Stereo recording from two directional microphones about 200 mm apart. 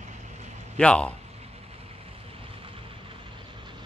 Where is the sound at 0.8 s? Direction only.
5° left (ahead or behind).